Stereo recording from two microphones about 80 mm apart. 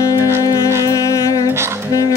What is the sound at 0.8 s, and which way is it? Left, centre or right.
Music, left.